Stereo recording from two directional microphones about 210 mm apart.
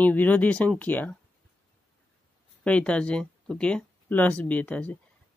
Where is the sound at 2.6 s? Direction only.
5° left (ahead or behind).